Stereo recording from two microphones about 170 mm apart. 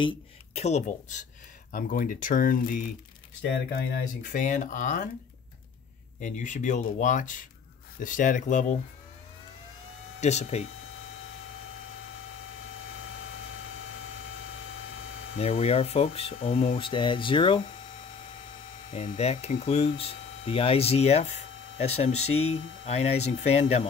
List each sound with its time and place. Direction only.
0.6 s speech: 40° left (ahead or behind)
4.2 s speech: 50° left (ahead or behind)
6.2 s speech: 45° left (ahead or behind)
10.2 s speech: 40° left (ahead or behind)
15.3 s speech: 35° left (ahead or behind)
18.9 s speech: 45° left (ahead or behind)